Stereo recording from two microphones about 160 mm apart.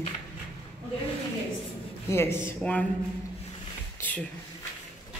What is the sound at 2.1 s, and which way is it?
Speech, 15° left (ahead or behind).